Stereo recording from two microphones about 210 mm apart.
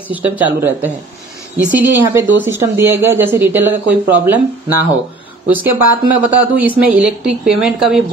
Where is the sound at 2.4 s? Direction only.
10° right (ahead or behind).